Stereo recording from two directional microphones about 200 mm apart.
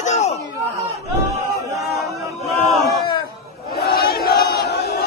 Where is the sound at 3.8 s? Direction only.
50° left (ahead or behind).